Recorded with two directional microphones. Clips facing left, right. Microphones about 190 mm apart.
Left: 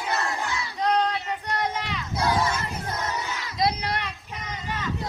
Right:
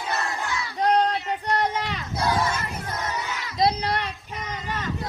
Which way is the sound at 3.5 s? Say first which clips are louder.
Right 3 dB; 30° right (ahead or behind).